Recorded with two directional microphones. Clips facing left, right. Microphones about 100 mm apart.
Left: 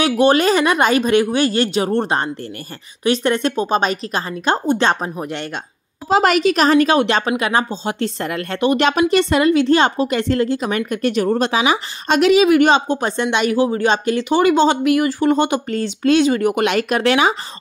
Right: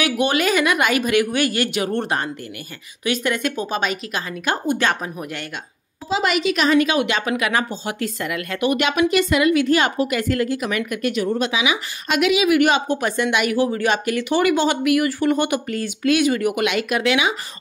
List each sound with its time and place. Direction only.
0.0 s a woman's voice: 35° left (ahead or behind)
6.0 s a woman's voice: 45° left (ahead or behind); by 8.1 s 25° left (ahead or behind)
8.2 s a woman's voice: 35° left (ahead or behind)